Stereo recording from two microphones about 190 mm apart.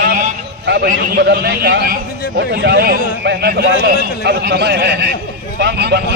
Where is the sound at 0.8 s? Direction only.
50° right (ahead or behind).